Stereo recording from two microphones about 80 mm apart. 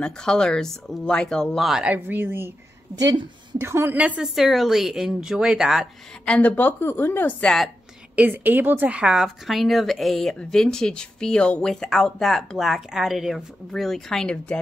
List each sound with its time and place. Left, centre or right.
0.0 s speech: centre
1.7 s speech: centre
2.0 s a woman's voice: right
3.5 s a woman's voice: right
3.9 s a woman's voice: centre
4.2 s speech: centre
6.2 s speech: centre
7.4 s speech: centre
8.2 s a woman's voice: right
9.0 s speech: centre